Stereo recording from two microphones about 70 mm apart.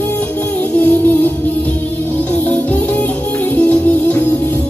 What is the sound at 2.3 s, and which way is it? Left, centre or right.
Music, left.